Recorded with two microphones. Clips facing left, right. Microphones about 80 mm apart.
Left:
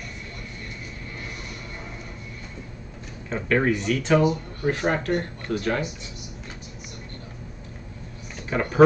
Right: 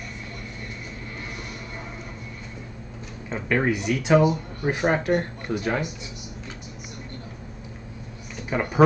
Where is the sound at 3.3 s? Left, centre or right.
Centre.